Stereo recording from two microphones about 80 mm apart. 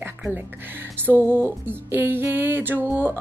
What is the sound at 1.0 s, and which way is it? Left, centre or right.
Speech, right.